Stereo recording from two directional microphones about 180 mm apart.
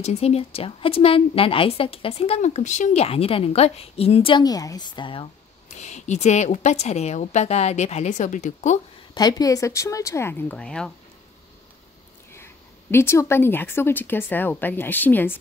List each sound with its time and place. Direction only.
0.0 s a woman's voice: 35° left (ahead or behind)
9.1 s a woman's voice: 20° left (ahead or behind); by 10.9 s 5° left (ahead or behind)
12.9 s a woman's voice: 15° left (ahead or behind)